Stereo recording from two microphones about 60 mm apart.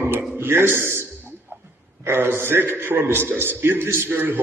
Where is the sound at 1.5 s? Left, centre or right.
Right.